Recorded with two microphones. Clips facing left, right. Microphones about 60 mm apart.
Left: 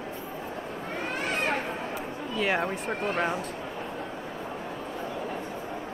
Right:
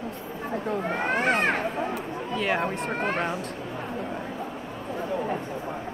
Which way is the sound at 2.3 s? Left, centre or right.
Centre.